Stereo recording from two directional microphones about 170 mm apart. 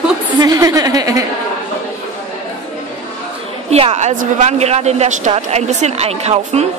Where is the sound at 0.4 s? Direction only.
20° right (ahead or behind).